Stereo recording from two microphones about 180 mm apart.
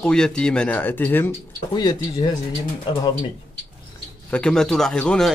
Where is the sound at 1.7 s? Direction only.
25° left (ahead or behind).